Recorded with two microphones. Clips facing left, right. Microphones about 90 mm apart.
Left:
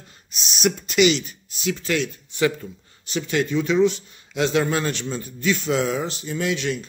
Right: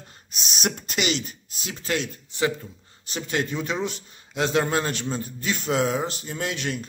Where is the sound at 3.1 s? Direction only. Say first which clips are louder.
Left 5 dB; 40° right (ahead or behind).